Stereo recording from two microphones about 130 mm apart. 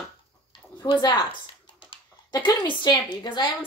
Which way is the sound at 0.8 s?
40° left (ahead or behind).